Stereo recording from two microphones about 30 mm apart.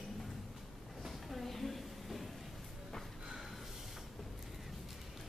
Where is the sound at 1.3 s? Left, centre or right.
Centre.